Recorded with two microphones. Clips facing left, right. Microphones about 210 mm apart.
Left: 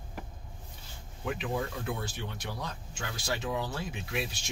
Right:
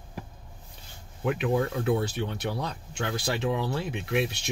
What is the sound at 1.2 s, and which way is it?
Speech, 60° right (ahead or behind).